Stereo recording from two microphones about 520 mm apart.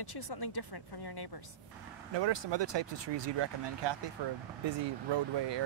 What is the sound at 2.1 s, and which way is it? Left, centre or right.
Speech, right.